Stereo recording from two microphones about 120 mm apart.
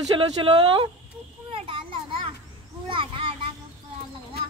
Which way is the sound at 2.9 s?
45° right (ahead or behind).